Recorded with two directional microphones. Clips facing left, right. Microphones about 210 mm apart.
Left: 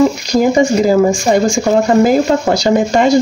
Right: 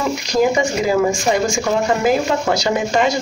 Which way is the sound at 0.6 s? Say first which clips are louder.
Left 6 dB; 35° left (ahead or behind).